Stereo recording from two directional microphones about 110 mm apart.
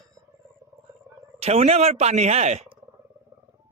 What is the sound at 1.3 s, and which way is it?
Speech, 70° right (ahead or behind).